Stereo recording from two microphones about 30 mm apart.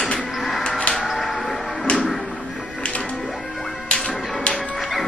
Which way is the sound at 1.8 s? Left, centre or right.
Left.